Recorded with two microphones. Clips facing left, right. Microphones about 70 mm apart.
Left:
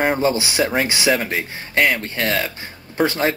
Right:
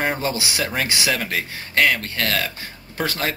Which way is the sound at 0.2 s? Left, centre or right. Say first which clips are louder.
Left 6 dB; left.